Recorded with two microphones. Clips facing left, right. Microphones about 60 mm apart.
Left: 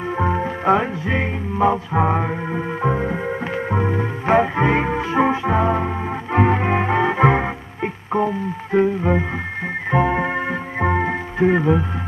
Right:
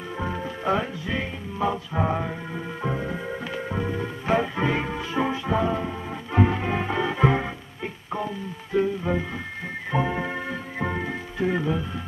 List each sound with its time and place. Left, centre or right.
0.2 s music: left